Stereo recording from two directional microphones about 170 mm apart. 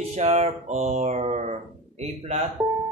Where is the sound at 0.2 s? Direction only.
40° right (ahead or behind).